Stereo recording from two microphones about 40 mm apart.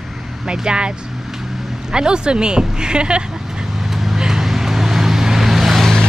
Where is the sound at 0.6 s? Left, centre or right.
Right.